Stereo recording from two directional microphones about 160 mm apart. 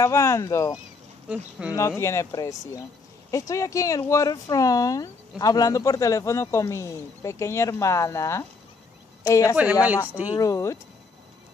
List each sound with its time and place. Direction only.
0.0 s speech: 15° left (ahead or behind)
1.3 s speech: 10° right (ahead or behind)
1.8 s speech: 15° left (ahead or behind)
9.6 s speech: 10° right (ahead or behind)
10.3 s speech: 20° left (ahead or behind)